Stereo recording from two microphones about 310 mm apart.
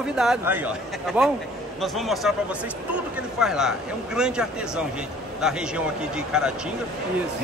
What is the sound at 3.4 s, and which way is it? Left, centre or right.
A man's voice, centre.